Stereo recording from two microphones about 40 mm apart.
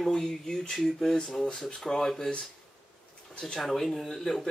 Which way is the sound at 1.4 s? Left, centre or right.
Left.